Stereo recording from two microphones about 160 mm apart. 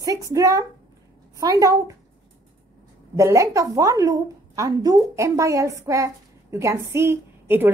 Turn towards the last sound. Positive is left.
turn(degrees=-15)  # may be behind; listen again after turning